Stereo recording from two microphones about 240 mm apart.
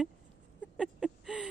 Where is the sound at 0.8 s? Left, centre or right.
Centre.